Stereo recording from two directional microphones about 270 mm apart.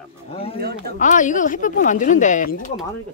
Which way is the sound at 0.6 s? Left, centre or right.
Right.